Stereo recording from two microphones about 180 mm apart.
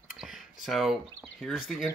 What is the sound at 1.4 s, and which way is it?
Speech, centre (ahead or behind).